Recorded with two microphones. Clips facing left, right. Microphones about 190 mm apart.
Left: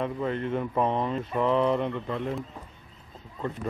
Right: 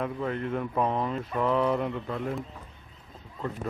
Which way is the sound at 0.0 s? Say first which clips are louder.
Left 2 dB; centre (ahead or behind).